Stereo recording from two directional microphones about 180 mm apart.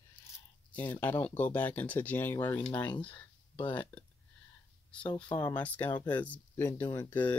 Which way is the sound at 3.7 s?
5° left (ahead or behind).